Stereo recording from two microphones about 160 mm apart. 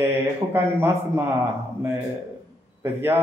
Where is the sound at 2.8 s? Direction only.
15° right (ahead or behind).